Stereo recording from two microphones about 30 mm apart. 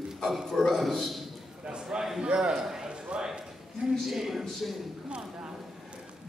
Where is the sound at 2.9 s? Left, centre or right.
Right.